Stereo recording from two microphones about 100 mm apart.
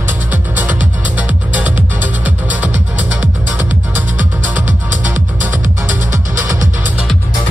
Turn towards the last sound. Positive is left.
turn(degrees=-20)  # may be behind; listen again after turning